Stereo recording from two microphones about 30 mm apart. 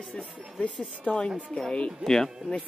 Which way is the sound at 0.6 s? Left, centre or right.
Left.